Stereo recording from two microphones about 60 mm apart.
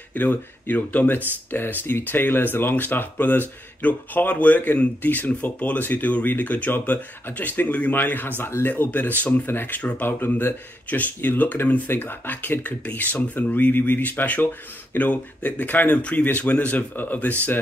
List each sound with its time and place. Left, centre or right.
0.1 s speech: left